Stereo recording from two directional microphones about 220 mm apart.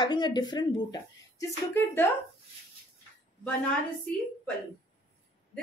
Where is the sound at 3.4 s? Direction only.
5° left (ahead or behind).